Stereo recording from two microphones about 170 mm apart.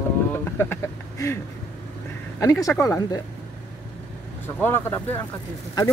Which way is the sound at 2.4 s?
20° left (ahead or behind).